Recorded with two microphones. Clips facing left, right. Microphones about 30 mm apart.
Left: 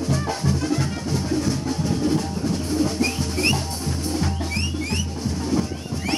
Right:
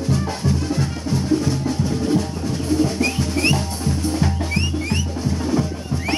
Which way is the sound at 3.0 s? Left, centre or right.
Right.